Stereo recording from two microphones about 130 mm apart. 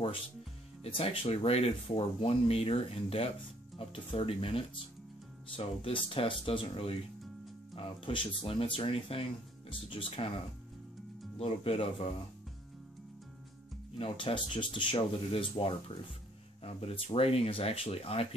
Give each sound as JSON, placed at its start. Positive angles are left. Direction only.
{"t": 0.8, "sound": "speech", "side_deg": 45}
{"t": 13.9, "sound": "speech", "side_deg": 45}